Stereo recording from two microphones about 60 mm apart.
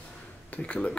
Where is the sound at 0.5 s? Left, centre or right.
Left.